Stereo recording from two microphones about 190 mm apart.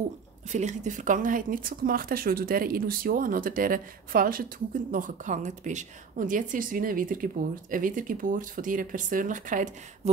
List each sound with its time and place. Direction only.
0.5 s speech: 40° right (ahead or behind)